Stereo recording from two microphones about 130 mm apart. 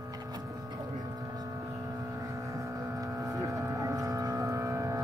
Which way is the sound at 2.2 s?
25° right (ahead or behind).